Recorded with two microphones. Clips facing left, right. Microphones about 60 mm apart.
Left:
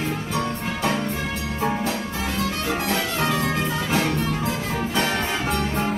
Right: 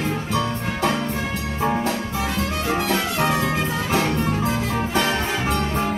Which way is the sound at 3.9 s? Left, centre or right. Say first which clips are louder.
Right 3 dB; right.